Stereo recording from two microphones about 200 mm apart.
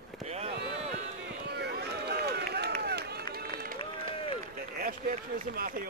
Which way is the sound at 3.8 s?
25° left (ahead or behind).